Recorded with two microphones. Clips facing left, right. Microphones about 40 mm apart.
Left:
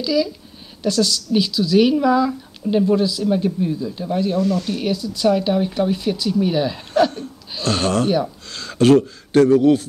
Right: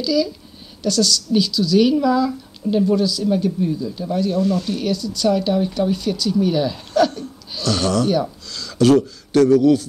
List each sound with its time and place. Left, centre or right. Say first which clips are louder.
0.0 s a woman's voice: even; centre
7.1 s speech: even; left